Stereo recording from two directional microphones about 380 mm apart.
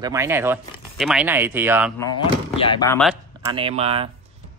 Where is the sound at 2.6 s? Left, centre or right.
Centre.